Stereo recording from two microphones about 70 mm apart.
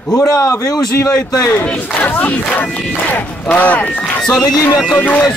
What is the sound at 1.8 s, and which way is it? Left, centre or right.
Battle cry, left.